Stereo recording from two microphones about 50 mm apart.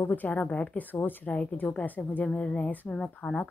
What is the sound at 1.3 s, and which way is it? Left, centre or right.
A woman's voice, left.